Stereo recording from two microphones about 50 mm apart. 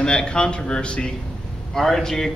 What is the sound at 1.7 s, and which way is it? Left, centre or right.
Speech, centre.